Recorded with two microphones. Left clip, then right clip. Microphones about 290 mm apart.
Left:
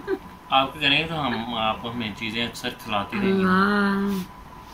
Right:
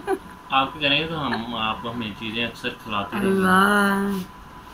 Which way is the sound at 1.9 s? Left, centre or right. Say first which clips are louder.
Even; left.